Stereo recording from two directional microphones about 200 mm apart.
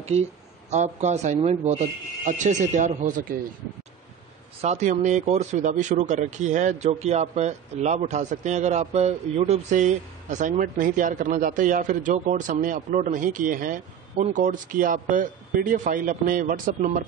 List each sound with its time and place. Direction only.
0.0 s speech: 30° right (ahead or behind)
4.6 s speech: 35° right (ahead or behind)